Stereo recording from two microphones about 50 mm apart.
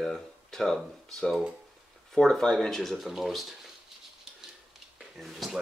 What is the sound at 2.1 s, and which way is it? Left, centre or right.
Speech, centre.